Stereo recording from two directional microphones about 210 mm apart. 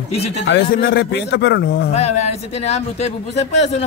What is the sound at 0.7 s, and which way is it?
A man's voice, 45° left (ahead or behind).